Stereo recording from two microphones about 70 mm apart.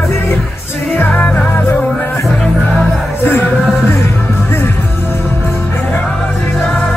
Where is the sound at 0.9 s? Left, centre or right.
Left.